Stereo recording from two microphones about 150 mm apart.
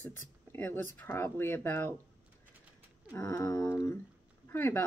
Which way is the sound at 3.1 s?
20° left (ahead or behind).